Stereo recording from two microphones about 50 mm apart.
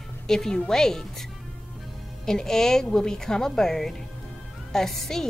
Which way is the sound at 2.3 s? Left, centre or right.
Centre.